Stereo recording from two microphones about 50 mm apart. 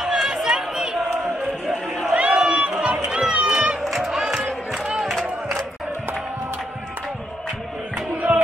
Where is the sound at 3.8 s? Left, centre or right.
Centre.